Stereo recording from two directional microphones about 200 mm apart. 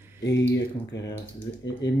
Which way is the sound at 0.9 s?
65° left (ahead or behind).